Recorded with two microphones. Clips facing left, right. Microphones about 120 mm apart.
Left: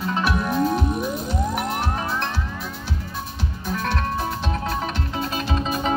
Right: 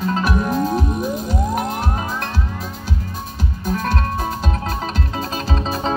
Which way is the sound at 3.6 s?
45° right (ahead or behind).